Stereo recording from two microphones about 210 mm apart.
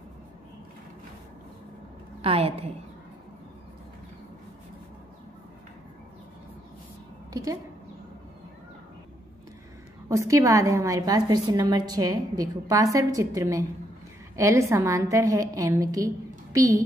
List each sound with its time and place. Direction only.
2.2 s a woman's voice: 30° right (ahead or behind)
10.0 s a woman's voice: 15° right (ahead or behind)